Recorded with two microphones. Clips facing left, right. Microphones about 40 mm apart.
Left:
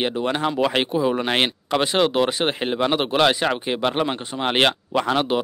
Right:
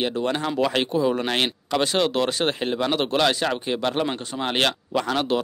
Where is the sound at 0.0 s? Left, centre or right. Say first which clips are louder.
Left 2 dB; centre.